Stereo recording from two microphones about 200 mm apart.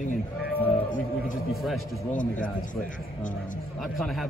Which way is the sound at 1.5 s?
Centre (ahead or behind).